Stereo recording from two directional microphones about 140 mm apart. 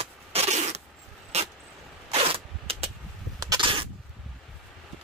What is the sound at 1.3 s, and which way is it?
Vehicle, 50° right (ahead or behind).